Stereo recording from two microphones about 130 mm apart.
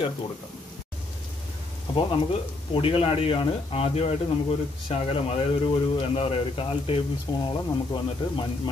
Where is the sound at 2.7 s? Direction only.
45° left (ahead or behind).